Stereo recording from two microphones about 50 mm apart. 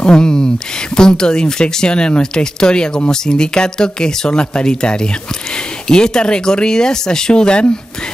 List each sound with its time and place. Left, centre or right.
0.0 s speech: centre